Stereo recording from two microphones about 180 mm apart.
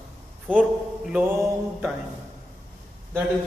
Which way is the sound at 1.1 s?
5° right (ahead or behind).